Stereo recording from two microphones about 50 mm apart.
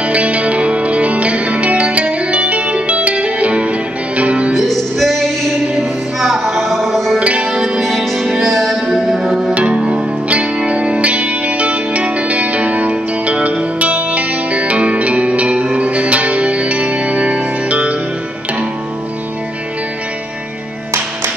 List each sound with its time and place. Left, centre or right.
0.0 s music: right
4.6 s music: centre
7.2 s music: right
7.8 s music: centre
8.2 s music: centre
8.5 s music: centre
9.5 s music: right